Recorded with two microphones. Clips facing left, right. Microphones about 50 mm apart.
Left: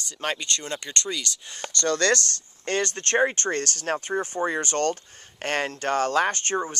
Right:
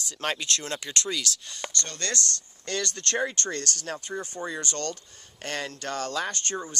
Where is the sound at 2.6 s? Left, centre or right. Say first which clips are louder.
Left 5 dB; left.